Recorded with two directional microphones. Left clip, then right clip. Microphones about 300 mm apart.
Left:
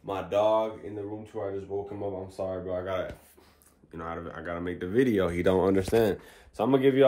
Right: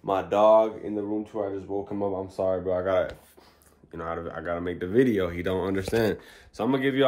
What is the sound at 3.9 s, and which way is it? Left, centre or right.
Speech, centre.